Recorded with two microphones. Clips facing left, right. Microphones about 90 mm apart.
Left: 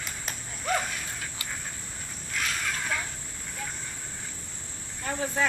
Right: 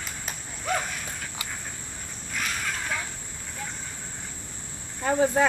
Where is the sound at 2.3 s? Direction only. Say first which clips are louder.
Even; centre (ahead or behind).